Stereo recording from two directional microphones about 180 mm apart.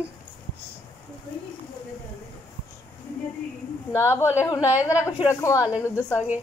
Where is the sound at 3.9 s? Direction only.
15° left (ahead or behind).